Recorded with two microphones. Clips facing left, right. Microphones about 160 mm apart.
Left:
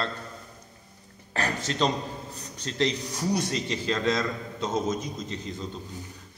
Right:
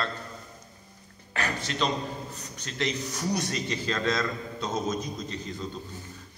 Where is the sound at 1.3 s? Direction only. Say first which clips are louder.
Left 2 dB; 35° left (ahead or behind).